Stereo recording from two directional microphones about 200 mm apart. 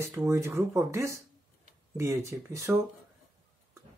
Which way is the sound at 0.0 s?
15° right (ahead or behind).